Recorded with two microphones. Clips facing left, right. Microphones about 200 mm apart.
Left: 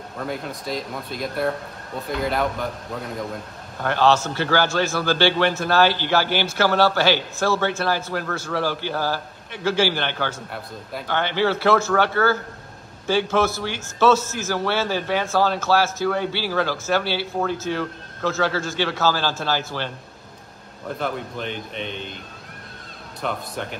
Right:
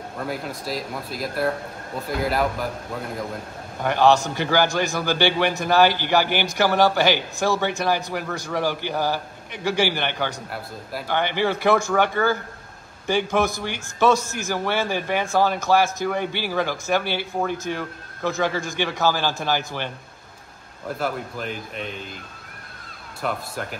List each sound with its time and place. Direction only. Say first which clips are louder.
0.2 s speech: even; 5° right (ahead or behind)
3.8 s a man's voice: right 1 dB; 15° right (ahead or behind)
21.0 s speech: even; 5° right (ahead or behind)
23.2 s speech: even; 5° right (ahead or behind)